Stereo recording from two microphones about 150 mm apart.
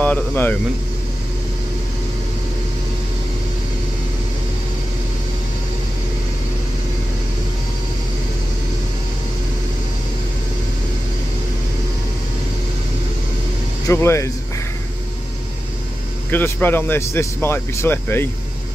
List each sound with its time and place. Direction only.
0.0 s speech: 10° left (ahead or behind)
13.8 s speech: 20° left (ahead or behind)
16.3 s speech: 10° left (ahead or behind)